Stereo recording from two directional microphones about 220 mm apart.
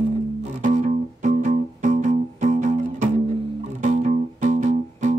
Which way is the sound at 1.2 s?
35° right (ahead or behind).